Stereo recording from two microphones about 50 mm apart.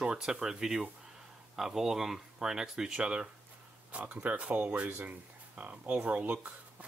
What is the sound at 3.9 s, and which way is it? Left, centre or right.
Speech, right.